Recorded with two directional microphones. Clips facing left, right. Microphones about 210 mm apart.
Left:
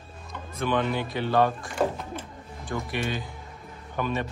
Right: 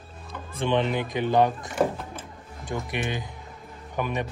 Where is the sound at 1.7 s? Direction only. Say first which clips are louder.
Right 1 dB; centre (ahead or behind).